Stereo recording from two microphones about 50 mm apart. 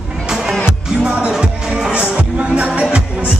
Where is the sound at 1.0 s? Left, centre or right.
Right.